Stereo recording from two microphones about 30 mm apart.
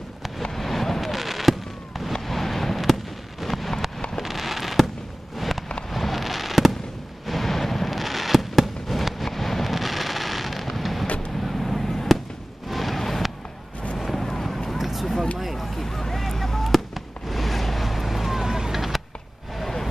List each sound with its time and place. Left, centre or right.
0.4 s vehicle: centre
1.1 s fireworks: centre
5.4 s a sound: centre
5.9 s fireworks: centre
7.2 s fireworks: centre
12.6 s music: centre
13.9 s vehicle: centre
14.8 s a sound: centre
15.3 s chop: centre
16.7 s fireworks: centre
18.4 s vehicle: centre
18.7 s vehicle: centre
19.5 s a sound: centre